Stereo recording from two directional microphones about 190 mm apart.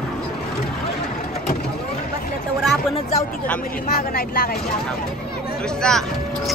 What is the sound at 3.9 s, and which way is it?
Speech, 50° left (ahead or behind).